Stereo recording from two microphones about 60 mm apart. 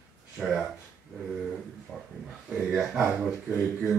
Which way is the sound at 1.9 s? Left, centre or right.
Centre.